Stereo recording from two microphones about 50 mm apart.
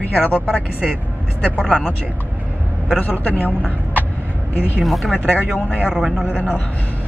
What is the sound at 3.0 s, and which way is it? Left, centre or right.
Speech, left.